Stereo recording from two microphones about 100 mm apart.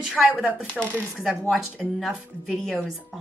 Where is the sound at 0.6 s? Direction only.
15° left (ahead or behind).